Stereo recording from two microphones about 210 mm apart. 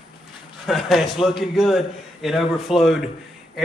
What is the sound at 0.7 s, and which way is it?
Speech, centre (ahead or behind).